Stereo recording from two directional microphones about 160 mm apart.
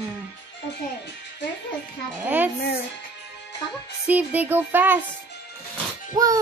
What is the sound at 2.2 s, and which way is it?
Speech, 10° right (ahead or behind).